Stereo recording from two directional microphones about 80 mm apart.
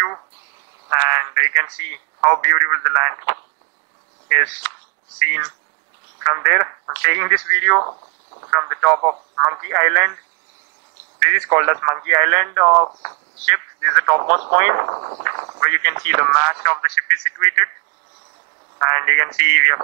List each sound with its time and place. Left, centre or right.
0.8 s speech: right
5.2 s speech: right
18.8 s speech: right